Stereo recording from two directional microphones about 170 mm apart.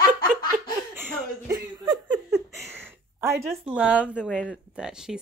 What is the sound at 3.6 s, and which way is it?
Speech, 5° right (ahead or behind).